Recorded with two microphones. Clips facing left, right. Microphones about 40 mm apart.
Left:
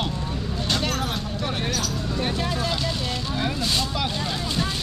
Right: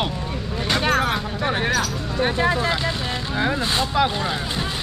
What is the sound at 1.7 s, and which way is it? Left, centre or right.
Speech, right.